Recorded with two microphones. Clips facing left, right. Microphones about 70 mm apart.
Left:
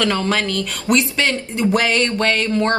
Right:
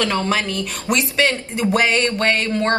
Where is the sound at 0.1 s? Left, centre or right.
Centre.